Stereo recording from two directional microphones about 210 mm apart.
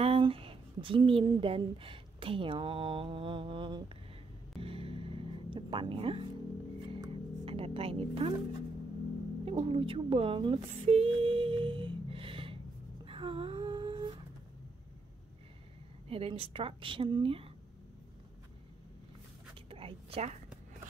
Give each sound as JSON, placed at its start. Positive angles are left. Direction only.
{"t": 0.0, "sound": "speech", "side_deg": -25}
{"t": 4.6, "sound": "music", "side_deg": -25}
{"t": 9.4, "sound": "speech", "side_deg": -25}
{"t": 13.0, "sound": "a sound", "side_deg": -25}
{"t": 16.1, "sound": "a woman's voice", "side_deg": -25}
{"t": 19.7, "sound": "a sound", "side_deg": -25}